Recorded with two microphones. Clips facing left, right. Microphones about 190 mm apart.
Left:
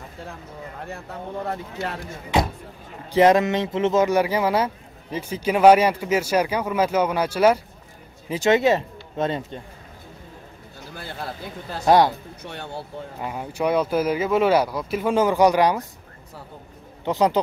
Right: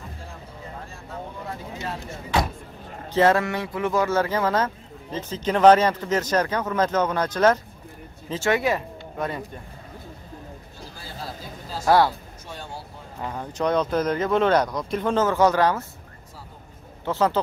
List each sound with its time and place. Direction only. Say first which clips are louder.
3.1 s speech: left 3 dB; 15° left (ahead or behind)
11.0 s a sound: left 5 dB; 65° left (ahead or behind)
11.8 s speech: left 2 dB; 20° left (ahead or behind)
12.4 s speech: left 4 dB; 65° left (ahead or behind)
13.2 s speech: left 1 dB; 10° left (ahead or behind)
17.0 s speech: left 2 dB; 15° left (ahead or behind)